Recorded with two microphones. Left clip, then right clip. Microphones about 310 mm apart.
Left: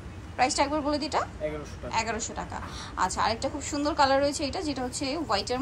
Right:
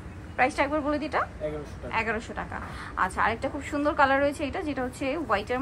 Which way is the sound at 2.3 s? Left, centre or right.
Centre.